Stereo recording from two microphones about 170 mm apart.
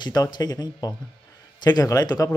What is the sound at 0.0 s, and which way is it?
Speech, 25° left (ahead or behind).